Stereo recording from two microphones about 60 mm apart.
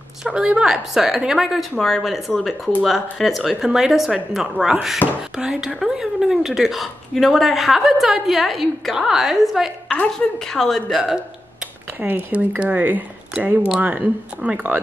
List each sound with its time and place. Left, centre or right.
0.2 s a woman's voice: centre
5.0 s speech: left
5.4 s a woman's voice: centre
10.1 s a woman's voice: centre
10.9 s a woman's voice: centre
12.0 s speech: right